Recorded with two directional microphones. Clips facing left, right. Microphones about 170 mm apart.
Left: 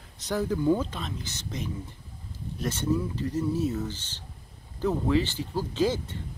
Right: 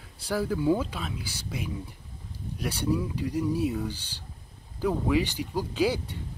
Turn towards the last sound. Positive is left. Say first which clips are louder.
# even
turn(degrees=-15)  # may be behind; listen again after turning